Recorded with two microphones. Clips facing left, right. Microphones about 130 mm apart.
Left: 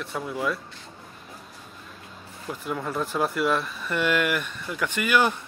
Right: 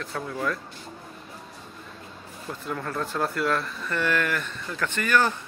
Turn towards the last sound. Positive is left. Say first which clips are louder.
# left 1 dB
turn(degrees=15)  # may be behind; listen again after turning